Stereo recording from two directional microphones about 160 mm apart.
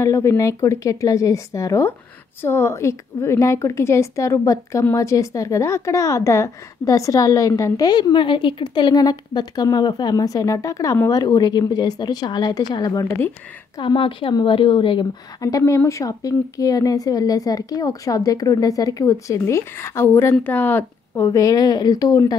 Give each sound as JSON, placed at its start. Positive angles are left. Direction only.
{"t": 0.0, "sound": "a woman's voice", "side_deg": 20}
{"t": 15.4, "sound": "a woman's voice", "side_deg": 20}